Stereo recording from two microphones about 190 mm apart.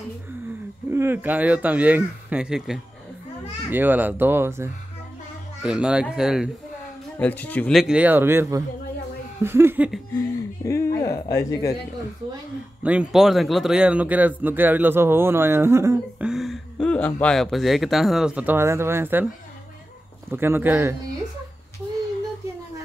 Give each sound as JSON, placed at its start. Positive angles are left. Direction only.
{"t": 0.8, "sound": "speech", "side_deg": -10}
{"t": 7.2, "sound": "speech", "side_deg": 10}
{"t": 10.1, "sound": "speech", "side_deg": 15}
{"t": 12.8, "sound": "speech", "side_deg": -5}
{"t": 16.3, "sound": "speech", "side_deg": 0}
{"t": 20.2, "sound": "speech", "side_deg": -10}